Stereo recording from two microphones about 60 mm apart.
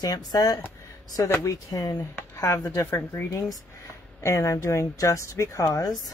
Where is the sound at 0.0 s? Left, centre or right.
Left.